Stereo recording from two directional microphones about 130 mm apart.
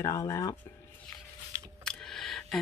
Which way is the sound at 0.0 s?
25° left (ahead or behind).